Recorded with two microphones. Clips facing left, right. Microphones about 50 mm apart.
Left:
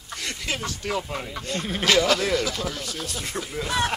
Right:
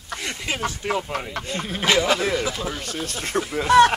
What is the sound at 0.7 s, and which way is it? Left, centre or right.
Speech, right.